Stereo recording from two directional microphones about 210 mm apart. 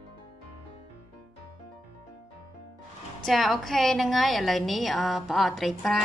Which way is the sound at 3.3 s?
Centre (ahead or behind).